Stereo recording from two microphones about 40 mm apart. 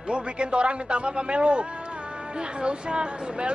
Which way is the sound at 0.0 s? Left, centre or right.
Right.